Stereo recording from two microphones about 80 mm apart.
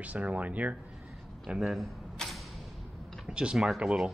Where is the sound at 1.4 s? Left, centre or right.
Centre.